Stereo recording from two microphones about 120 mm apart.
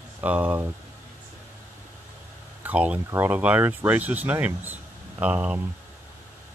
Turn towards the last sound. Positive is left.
turn(degrees=-10)  # may be behind; listen again after turning